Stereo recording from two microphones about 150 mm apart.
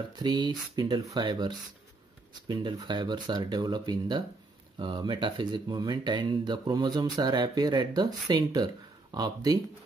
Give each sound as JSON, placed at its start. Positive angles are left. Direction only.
{"t": 0.1, "sound": "speech", "side_deg": -30}